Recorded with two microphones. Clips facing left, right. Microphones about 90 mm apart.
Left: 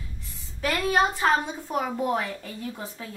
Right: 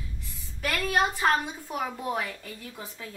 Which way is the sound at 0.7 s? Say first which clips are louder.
Left 4 dB; 25° left (ahead or behind).